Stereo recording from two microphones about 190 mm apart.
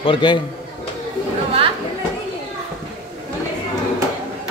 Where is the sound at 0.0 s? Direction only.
25° left (ahead or behind).